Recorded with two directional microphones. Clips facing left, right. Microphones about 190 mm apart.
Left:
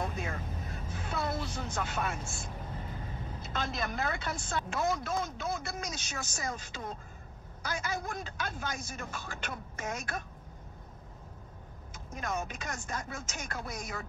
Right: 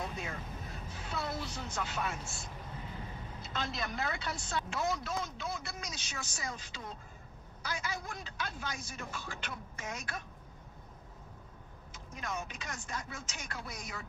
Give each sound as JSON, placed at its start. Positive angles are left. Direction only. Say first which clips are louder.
{"t": 0.0, "sound": "vehicle", "louder": "left 4 dB", "side_deg": 50}
{"t": 3.4, "sound": "speech", "louder": "left 3 dB", "side_deg": 50}
{"t": 11.9, "sound": "speech", "louder": "left 4 dB", "side_deg": 45}